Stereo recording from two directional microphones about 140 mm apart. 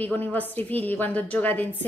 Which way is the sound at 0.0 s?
10° left (ahead or behind).